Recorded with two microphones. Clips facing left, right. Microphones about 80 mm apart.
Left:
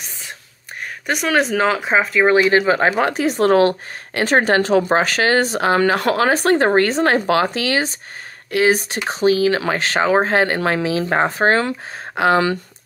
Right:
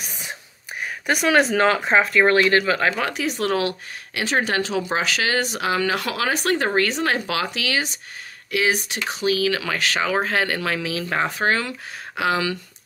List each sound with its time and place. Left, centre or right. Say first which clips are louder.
1.0 s speech: even; centre
2.3 s speech: left 6 dB; centre
2.6 s speech: left 5 dB; left